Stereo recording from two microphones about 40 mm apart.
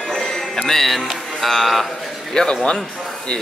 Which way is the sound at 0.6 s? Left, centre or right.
Centre.